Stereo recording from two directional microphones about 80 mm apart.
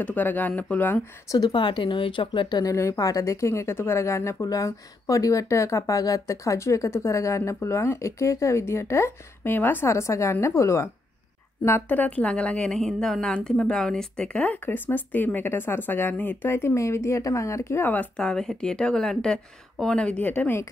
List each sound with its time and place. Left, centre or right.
0.0 s a woman's voice: left
1.5 s speech: left
2.6 s speech: left
9.8 s speech: left
11.9 s a woman's voice: centre
18.1 s speech: centre; by 20.6 s left